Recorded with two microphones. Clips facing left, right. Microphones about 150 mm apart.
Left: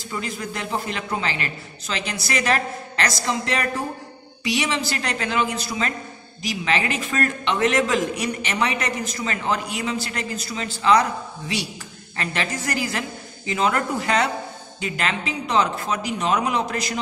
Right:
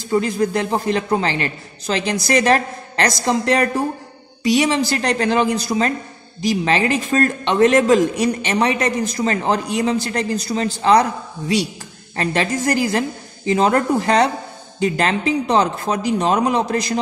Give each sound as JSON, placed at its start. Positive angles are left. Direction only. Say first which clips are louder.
{"t": 0.1, "sound": "a man's voice", "louder": "right 12 dB", "side_deg": -40}